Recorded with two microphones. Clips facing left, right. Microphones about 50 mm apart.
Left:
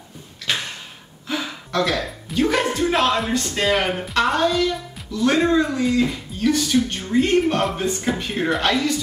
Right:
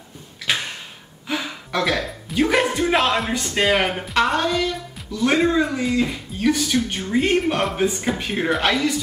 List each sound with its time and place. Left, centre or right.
0.5 s tick-tock: centre
1.2 s a sound: centre
3.3 s speech: centre
3.5 s speech: right
3.8 s speech: centre
5.4 s speech: centre